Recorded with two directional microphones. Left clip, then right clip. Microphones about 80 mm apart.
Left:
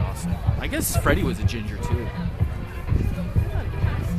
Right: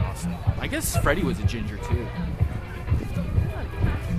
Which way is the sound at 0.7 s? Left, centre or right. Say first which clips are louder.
Left 1 dB; centre.